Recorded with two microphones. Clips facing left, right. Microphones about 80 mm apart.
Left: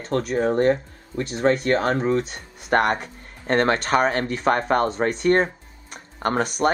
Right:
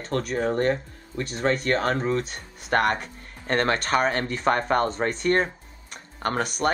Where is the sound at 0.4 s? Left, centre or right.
Centre.